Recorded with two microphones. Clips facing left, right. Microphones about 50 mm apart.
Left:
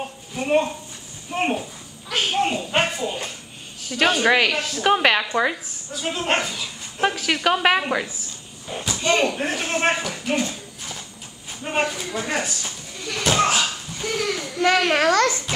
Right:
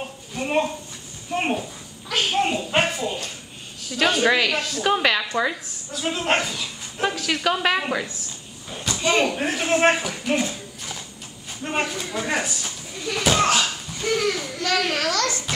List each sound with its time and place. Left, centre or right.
0.3 s a woman's voice: centre
4.8 s a child's voice: left
5.9 s a woman's voice: centre
8.8 s speech: centre
11.6 s speech: centre
14.6 s a child's voice: left